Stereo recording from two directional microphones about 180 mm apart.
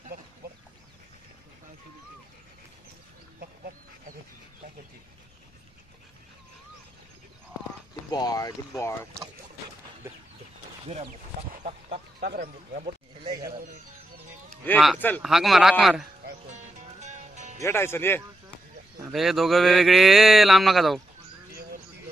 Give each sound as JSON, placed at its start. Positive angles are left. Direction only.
{"t": 8.1, "sound": "speech", "side_deg": 20}
{"t": 11.5, "sound": "a sound", "side_deg": -50}
{"t": 12.3, "sound": "speech", "side_deg": -65}
{"t": 15.0, "sound": "speech", "side_deg": 10}
{"t": 15.2, "sound": "speech", "side_deg": 0}
{"t": 16.4, "sound": "music", "side_deg": -40}
{"t": 17.6, "sound": "speech", "side_deg": 15}
{"t": 19.0, "sound": "speech", "side_deg": 0}